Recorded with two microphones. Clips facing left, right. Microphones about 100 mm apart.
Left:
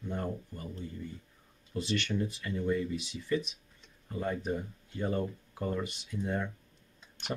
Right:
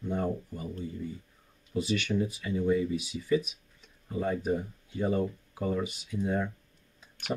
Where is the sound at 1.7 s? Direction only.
5° right (ahead or behind).